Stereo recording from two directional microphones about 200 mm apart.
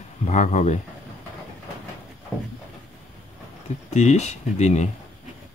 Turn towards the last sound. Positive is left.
turn(degrees=35)  # may be behind; listen again after turning